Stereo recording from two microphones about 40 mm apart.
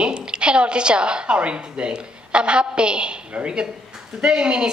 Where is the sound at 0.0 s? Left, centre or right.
Right.